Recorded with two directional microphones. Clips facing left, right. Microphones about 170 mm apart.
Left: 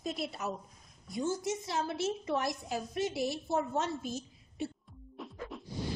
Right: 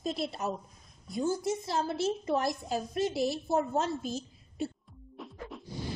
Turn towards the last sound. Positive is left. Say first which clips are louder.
# even
turn(degrees=0)  # may be behind; listen again after turning